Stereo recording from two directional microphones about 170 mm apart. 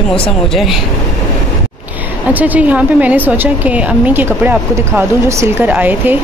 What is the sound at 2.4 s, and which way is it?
A woman's voice, 10° right (ahead or behind).